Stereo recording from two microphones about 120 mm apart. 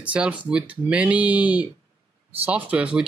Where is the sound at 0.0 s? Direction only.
10° right (ahead or behind).